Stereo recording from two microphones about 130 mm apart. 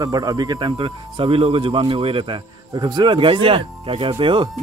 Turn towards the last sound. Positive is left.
turn(degrees=-40)  # may be behind; listen again after turning